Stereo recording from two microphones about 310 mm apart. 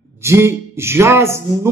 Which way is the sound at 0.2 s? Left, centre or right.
Centre.